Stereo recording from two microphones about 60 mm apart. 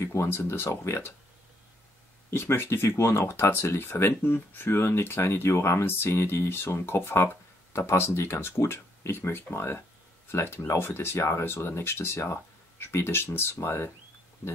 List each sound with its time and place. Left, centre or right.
0.0 s speech: left
2.3 s speech: left